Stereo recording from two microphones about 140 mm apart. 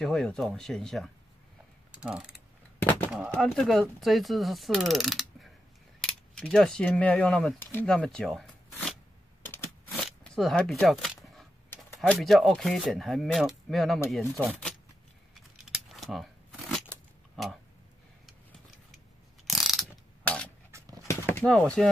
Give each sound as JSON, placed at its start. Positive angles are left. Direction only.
{"t": 0.0, "sound": "speech", "side_deg": 5}
{"t": 1.9, "sound": "mechanisms", "side_deg": -5}
{"t": 2.8, "sound": "speech", "side_deg": 15}
{"t": 3.1, "sound": "speech", "side_deg": 0}
{"t": 6.0, "sound": "cutlery", "side_deg": 5}
{"t": 7.8, "sound": "speech", "side_deg": 5}
{"t": 10.0, "sound": "a sound", "side_deg": 0}
{"t": 12.1, "sound": "speech", "side_deg": 0}
{"t": 15.5, "sound": "tearing", "side_deg": 0}
{"t": 19.4, "sound": "ratchet", "side_deg": 0}
{"t": 20.7, "sound": "dog", "side_deg": -20}
{"t": 21.1, "sound": "horse", "side_deg": 15}
{"t": 21.5, "sound": "speech", "side_deg": 5}